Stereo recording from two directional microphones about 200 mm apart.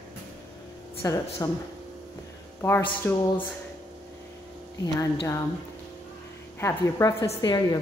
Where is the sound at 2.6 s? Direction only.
10° left (ahead or behind).